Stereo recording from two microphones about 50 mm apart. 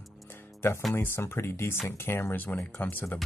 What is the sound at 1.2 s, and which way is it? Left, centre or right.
Speech, left.